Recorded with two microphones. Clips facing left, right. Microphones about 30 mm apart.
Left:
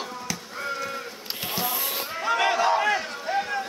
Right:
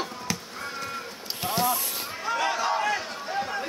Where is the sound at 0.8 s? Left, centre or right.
Centre.